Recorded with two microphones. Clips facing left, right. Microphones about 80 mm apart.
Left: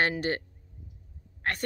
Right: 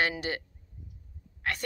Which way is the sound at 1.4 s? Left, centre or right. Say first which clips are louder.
Left 1 dB; left.